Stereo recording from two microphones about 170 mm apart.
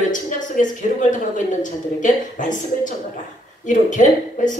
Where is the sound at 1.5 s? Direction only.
50° left (ahead or behind).